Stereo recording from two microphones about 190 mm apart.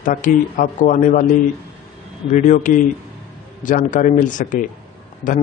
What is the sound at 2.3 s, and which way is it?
Speech, 40° left (ahead or behind).